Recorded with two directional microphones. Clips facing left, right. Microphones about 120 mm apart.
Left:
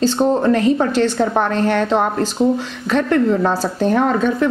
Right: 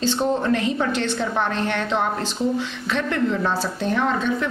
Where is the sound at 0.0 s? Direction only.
40° left (ahead or behind).